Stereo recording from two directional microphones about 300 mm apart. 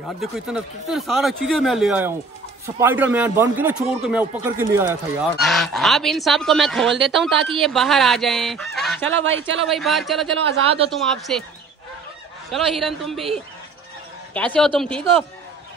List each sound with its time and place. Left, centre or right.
0.2 s a man's voice: centre
10.4 s speech: centre
10.9 s a man's voice: centre
12.4 s a man's voice: centre